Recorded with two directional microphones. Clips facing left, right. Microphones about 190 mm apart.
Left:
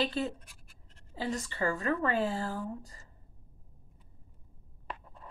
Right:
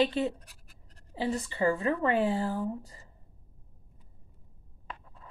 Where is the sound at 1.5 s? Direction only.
15° right (ahead or behind).